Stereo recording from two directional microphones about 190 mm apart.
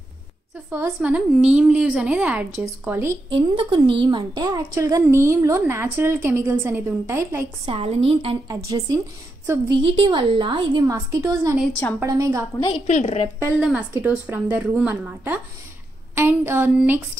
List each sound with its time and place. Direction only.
0.7 s a woman's voice: 10° right (ahead or behind)
3.3 s a woman's voice: 25° right (ahead or behind)
7.6 s a woman's voice: 30° right (ahead or behind)
8.6 s a woman's voice: 20° right (ahead or behind)
12.8 s a woman's voice: 35° left (ahead or behind)
13.6 s a woman's voice: 5° right (ahead or behind)